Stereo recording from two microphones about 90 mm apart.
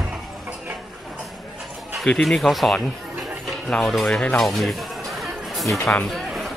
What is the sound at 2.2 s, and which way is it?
Speech, centre (ahead or behind).